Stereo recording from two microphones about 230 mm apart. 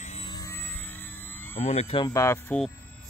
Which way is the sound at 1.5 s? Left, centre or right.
Left.